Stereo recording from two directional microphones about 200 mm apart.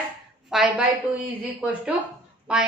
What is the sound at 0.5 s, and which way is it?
Speech, centre (ahead or behind).